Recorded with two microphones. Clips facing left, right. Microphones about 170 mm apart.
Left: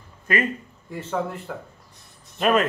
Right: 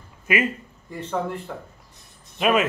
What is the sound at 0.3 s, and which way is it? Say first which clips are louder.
Speech: right 1 dB; 10° right (ahead or behind).